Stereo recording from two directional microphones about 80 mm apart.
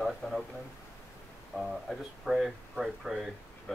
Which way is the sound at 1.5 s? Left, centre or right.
Centre.